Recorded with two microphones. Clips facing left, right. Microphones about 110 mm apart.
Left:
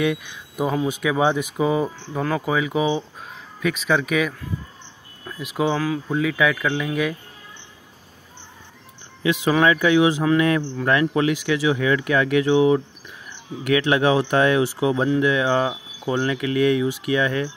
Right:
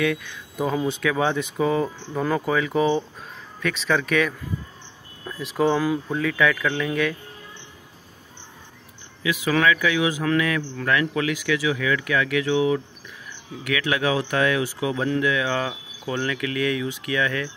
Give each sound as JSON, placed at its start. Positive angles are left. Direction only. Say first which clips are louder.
{"t": 0.0, "sound": "speech", "louder": "left 1 dB", "side_deg": 15}
{"t": 5.4, "sound": "speech", "louder": "right 1 dB", "side_deg": 5}
{"t": 9.2, "sound": "speech", "louder": "left 3 dB", "side_deg": 35}
{"t": 10.0, "sound": "speech", "louder": "left 4 dB", "side_deg": 20}